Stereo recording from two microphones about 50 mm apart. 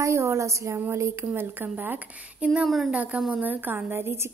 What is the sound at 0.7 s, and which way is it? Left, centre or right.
Speech, right.